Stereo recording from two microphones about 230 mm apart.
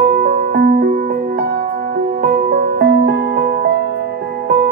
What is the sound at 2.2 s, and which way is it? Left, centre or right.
Music, right.